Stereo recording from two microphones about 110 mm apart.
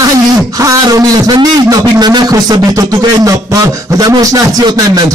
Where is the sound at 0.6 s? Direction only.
30° right (ahead or behind).